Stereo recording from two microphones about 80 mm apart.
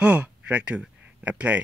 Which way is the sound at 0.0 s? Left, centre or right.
Centre.